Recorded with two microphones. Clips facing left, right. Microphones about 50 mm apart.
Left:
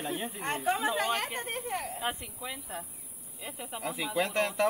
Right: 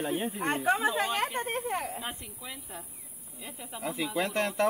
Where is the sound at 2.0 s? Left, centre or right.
Centre.